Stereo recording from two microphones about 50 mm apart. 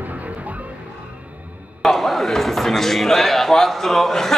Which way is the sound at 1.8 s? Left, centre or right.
Centre.